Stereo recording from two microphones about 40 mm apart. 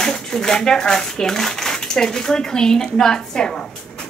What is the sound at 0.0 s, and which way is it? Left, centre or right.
Speech, centre.